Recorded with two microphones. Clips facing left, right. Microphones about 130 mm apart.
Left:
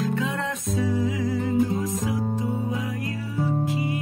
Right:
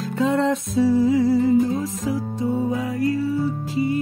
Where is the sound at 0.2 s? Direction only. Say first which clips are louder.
Right 9 dB; 30° right (ahead or behind).